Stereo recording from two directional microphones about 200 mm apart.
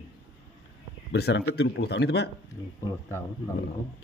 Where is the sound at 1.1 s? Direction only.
60° left (ahead or behind).